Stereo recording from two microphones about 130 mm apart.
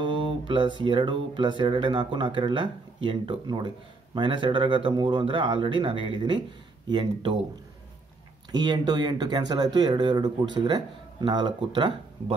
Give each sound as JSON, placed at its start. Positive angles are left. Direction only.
{"t": 0.0, "sound": "speech", "side_deg": -40}
{"t": 8.5, "sound": "speech", "side_deg": -35}